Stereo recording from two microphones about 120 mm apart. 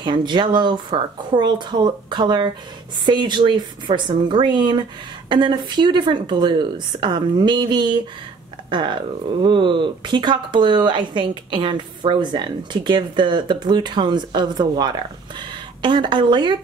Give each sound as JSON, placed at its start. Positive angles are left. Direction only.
{"t": 0.0, "sound": "speech", "side_deg": -40}